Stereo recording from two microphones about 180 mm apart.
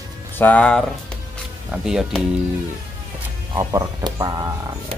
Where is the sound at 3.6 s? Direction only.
20° right (ahead or behind).